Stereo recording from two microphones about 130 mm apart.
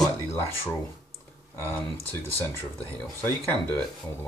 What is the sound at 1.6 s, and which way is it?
Speech, 15° left (ahead or behind).